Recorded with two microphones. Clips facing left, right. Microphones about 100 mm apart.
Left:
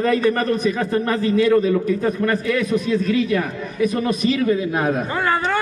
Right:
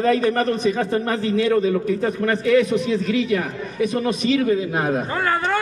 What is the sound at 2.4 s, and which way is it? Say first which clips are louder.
A man's voice: right 3 dB; 25° right (ahead or behind).